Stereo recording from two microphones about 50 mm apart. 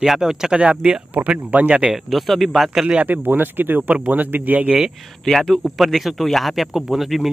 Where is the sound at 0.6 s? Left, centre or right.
Right.